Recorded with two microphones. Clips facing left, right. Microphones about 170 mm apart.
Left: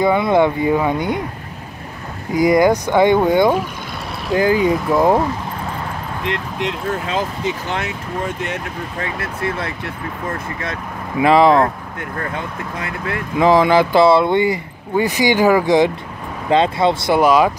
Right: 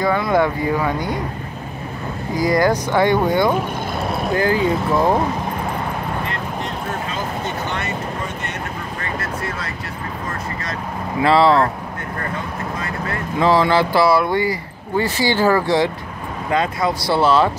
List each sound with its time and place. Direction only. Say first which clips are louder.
0.0 s speech: left 3 dB; 20° left (ahead or behind)
2.3 s speech: left 4 dB; 20° left (ahead or behind)
6.2 s speech: left 3 dB; 90° left
9.2 s speech: left 3 dB; 60° left (ahead or behind)
11.1 s speech: left 2 dB; 15° left (ahead or behind)
13.4 s speech: left 3 dB; 15° left (ahead or behind)
16.4 s speech: left 5 dB; 25° left (ahead or behind)